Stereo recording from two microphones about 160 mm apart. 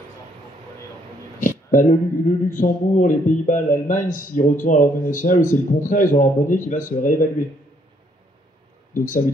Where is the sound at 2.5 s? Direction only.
55° left (ahead or behind).